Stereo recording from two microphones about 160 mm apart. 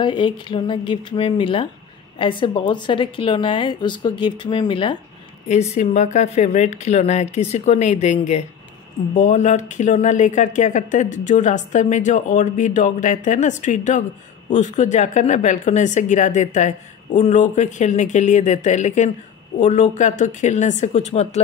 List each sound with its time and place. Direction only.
0.0 s a woman's voice: 30° left (ahead or behind)
5.5 s speech: 45° left (ahead or behind)